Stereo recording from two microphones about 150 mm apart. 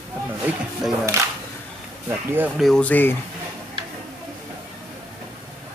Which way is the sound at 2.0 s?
15° right (ahead or behind).